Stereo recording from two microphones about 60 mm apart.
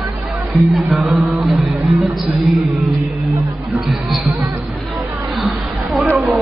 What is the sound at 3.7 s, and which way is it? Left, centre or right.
Speech, centre.